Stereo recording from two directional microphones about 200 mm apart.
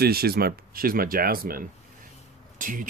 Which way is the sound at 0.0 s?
50° right (ahead or behind).